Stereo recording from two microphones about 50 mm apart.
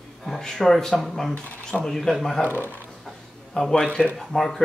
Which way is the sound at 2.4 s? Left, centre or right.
Right.